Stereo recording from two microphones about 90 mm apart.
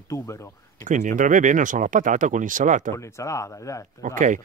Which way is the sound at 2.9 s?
35° left (ahead or behind).